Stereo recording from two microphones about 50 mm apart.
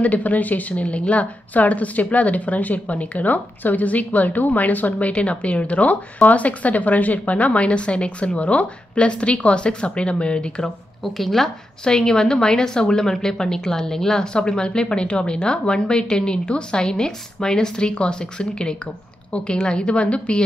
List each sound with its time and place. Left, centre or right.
0.0 s a woman's voice: left
11.1 s speech: centre
11.8 s a woman's voice: centre